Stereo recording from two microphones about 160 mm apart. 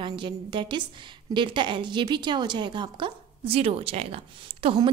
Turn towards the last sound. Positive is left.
turn(degrees=-35)  # may be behind; listen again after turning